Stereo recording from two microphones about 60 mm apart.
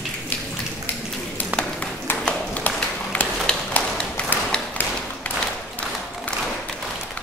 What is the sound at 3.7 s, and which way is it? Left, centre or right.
Tap, left.